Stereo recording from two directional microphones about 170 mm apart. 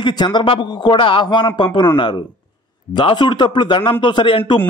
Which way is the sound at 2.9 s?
25° left (ahead or behind).